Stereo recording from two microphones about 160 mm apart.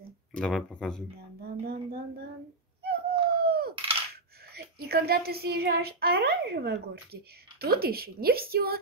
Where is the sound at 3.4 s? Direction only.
75° right (ahead or behind).